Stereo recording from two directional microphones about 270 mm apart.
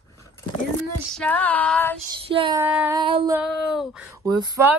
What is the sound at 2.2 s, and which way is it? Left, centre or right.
Child singing, centre.